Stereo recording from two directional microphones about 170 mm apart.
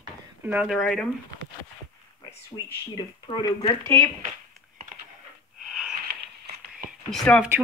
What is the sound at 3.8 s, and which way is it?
Speech, 15° left (ahead or behind).